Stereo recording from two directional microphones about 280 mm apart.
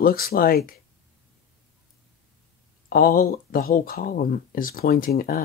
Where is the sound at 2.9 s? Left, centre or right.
Left.